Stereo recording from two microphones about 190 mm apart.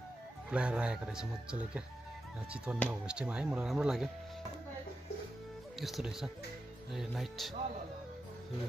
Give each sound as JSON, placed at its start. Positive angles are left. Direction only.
{"t": 0.5, "sound": "speech", "side_deg": -5}
{"t": 5.8, "sound": "speech", "side_deg": 0}